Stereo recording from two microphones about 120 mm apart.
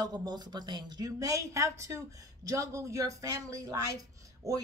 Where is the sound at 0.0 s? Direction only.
35° right (ahead or behind).